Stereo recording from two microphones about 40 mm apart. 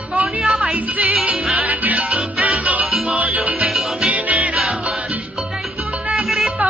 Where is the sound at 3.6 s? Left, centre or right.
Centre.